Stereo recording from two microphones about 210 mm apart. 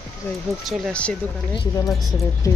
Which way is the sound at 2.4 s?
15° left (ahead or behind).